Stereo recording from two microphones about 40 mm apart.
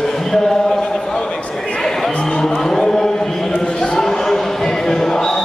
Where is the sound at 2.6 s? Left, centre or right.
Centre.